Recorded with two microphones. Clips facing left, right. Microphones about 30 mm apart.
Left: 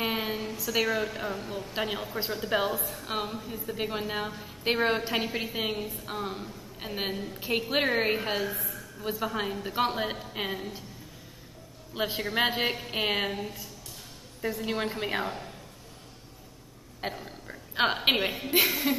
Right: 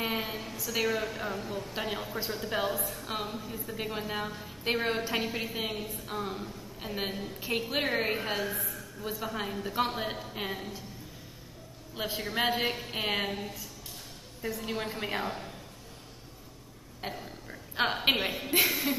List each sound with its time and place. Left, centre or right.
0.0 s a sound: centre
0.7 s a woman's voice: centre
11.9 s a man's voice: left
14.4 s a woman's voice: centre
17.0 s a sound: centre
17.9 s a woman's voice: centre